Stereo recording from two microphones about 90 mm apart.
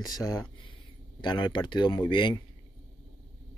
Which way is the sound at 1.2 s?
55° left (ahead or behind).